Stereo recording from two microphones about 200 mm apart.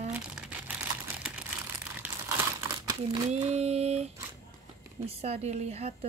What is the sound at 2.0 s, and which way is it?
Crumpling, 10° right (ahead or behind).